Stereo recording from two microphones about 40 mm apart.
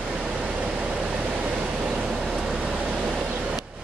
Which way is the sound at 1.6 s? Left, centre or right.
Right.